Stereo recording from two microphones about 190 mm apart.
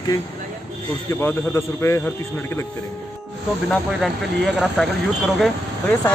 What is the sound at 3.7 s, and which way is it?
Speech, centre (ahead or behind).